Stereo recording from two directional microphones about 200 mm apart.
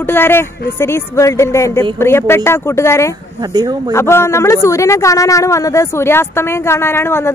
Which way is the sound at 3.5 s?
20° right (ahead or behind).